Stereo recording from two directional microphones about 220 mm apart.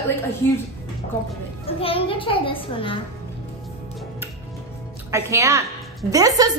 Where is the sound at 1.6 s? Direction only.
25° left (ahead or behind).